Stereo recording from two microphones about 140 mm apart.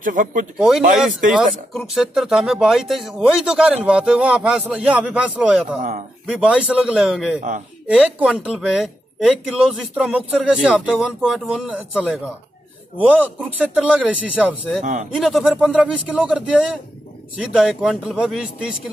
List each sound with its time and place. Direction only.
0.0 s speech: 75° right (ahead or behind)
0.6 s speech: 5° right (ahead or behind)
5.8 s speech: 70° right (ahead or behind)
6.2 s speech: 10° right (ahead or behind)